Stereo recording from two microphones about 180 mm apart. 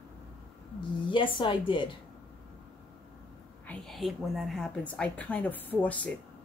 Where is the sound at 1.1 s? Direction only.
25° left (ahead or behind).